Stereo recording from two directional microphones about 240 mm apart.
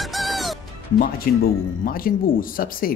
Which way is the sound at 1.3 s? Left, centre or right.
Left.